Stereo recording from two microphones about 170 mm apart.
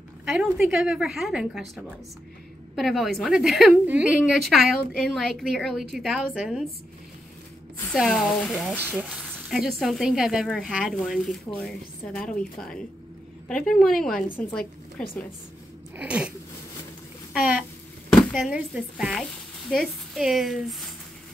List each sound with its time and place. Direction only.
0.2 s a woman's voice: 5° right (ahead or behind)
2.7 s a woman's voice: centre (ahead or behind)
7.9 s a woman's voice: centre (ahead or behind)
16.0 s a sound: 5° right (ahead or behind)
18.1 s a woman's voice: centre (ahead or behind)